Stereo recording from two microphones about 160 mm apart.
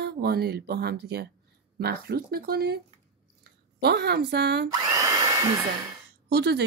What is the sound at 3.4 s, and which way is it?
Speech, 90° right.